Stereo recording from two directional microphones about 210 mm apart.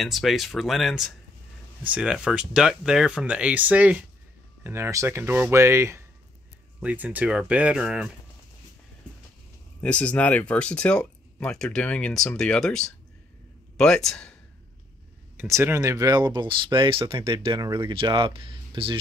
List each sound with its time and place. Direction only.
0.0 s speech: centre (ahead or behind)
9.8 s speech: 5° left (ahead or behind)
15.3 s speech: 10° right (ahead or behind)